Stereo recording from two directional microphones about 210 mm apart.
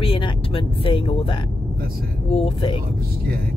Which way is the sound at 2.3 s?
25° left (ahead or behind).